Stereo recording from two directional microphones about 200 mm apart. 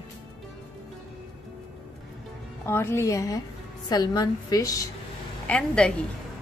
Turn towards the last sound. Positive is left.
turn(degrees=5)  # may be behind; listen again after turning